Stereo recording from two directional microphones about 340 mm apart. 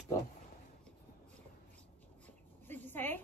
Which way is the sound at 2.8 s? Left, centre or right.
Centre.